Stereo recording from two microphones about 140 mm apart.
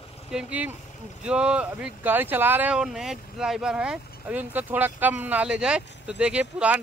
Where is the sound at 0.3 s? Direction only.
10° right (ahead or behind).